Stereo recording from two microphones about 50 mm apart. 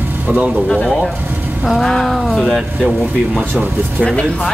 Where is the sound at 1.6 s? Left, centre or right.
Centre.